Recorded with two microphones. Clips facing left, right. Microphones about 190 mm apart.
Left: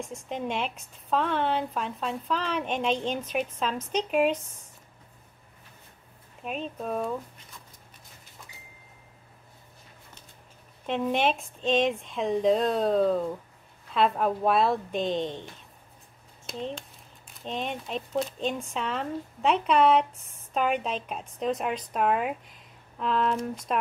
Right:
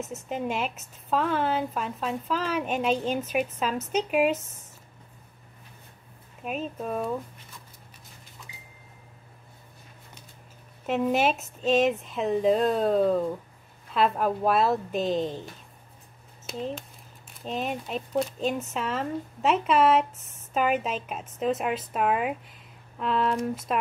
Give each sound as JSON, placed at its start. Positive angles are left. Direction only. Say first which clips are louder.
{"t": 0.0, "sound": "speech", "louder": "right 2 dB", "side_deg": -5}
{"t": 6.4, "sound": "speech", "louder": "right 1 dB", "side_deg": -5}
{"t": 8.4, "sound": "a sound", "louder": "right 1 dB", "side_deg": 45}
{"t": 10.9, "sound": "speech", "louder": "right 2 dB", "side_deg": -5}
{"t": 16.4, "sound": "speech", "louder": "right 2 dB", "side_deg": -5}